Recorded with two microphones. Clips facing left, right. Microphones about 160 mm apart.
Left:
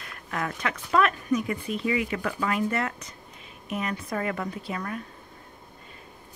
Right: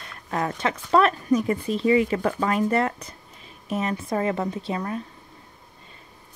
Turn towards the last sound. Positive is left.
turn(degrees=-25)  # may be behind; listen again after turning